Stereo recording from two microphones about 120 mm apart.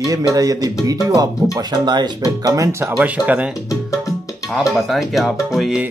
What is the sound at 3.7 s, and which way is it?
Music, 25° left (ahead or behind).